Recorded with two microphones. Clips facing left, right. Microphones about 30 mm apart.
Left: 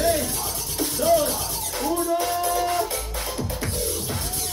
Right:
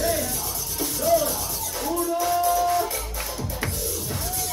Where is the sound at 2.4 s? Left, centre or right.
Left.